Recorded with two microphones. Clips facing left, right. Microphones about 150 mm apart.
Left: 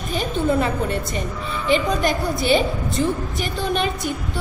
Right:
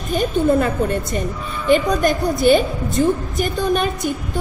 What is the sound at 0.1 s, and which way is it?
A woman's voice, 50° right (ahead or behind).